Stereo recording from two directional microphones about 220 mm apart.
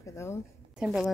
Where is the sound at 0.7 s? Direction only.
5° right (ahead or behind).